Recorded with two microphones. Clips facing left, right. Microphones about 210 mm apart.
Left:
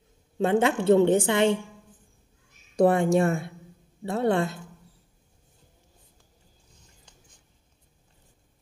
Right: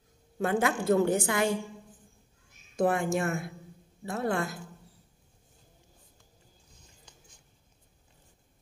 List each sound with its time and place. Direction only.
0.4 s a woman's voice: 25° left (ahead or behind)
2.7 s a woman's voice: 35° left (ahead or behind)